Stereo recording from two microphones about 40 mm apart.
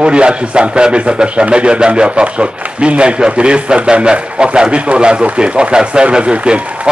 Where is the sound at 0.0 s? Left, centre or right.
Right.